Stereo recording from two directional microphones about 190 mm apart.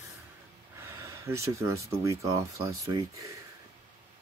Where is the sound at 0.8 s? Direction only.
15° right (ahead or behind).